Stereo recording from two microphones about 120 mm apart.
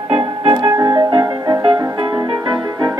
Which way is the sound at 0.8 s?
30° right (ahead or behind).